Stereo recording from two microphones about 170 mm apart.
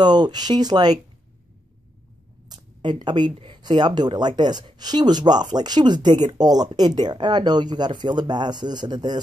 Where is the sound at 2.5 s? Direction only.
25° right (ahead or behind).